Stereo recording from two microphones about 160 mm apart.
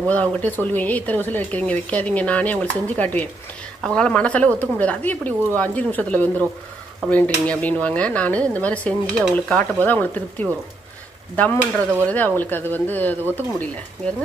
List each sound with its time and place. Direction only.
0.0 s speech: 10° left (ahead or behind)
12.1 s speech: 10° left (ahead or behind)